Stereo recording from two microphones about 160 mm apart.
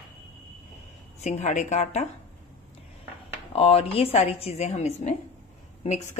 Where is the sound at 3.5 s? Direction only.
35° left (ahead or behind).